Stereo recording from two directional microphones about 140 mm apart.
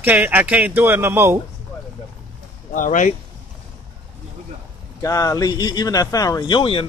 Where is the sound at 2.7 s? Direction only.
70° left (ahead or behind).